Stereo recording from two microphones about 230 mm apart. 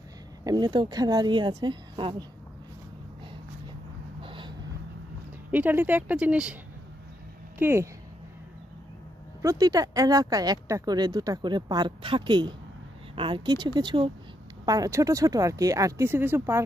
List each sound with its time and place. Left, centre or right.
0.4 s speech: centre
4.2 s a sound: right
5.5 s speech: centre
7.5 s speech: centre
9.4 s speech: centre